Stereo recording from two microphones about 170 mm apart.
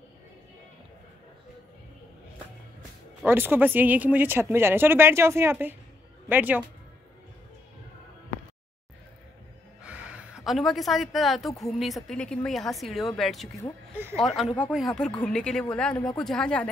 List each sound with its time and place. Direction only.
3.3 s a woman's voice: 10° right (ahead or behind)
9.8 s a woman's voice: 10° right (ahead or behind)